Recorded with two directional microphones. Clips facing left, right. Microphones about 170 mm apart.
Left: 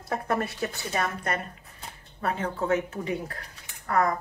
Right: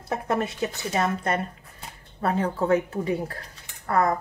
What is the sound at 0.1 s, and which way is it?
A woman's voice, 20° right (ahead or behind).